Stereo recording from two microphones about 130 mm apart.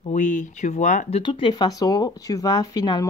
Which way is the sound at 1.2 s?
40° left (ahead or behind).